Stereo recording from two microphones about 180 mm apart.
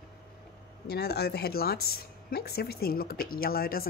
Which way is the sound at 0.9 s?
65° left (ahead or behind).